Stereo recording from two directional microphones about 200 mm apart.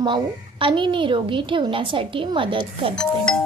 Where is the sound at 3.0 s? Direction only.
5° left (ahead or behind).